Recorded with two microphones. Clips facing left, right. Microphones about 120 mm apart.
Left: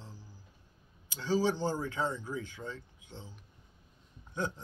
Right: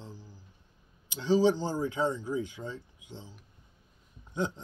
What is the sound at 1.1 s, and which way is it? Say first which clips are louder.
A man's voice: right 5 dB; 20° right (ahead or behind).